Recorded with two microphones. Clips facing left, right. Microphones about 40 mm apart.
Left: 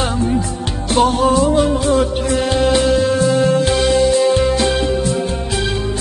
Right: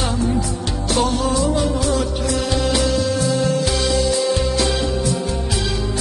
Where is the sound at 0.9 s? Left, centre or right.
Left.